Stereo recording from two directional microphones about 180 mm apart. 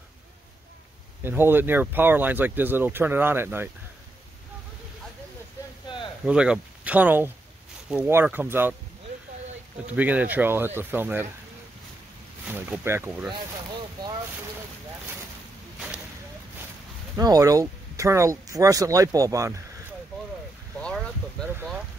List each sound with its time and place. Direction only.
1.2 s speech: 10° right (ahead or behind)
6.2 s speech: 5° right (ahead or behind)
9.9 s speech: 10° right (ahead or behind)
12.4 s speech: 10° right (ahead or behind)
17.2 s speech: 20° right (ahead or behind)
20.8 s boat: 5° left (ahead or behind)